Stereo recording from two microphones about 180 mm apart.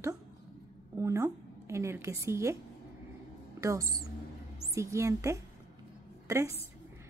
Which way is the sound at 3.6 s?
15° right (ahead or behind).